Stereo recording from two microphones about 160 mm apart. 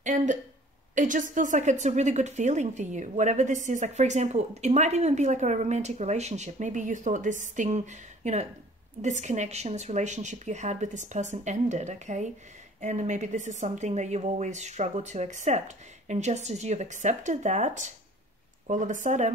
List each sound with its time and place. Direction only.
0.0 s a woman's voice: 50° right (ahead or behind)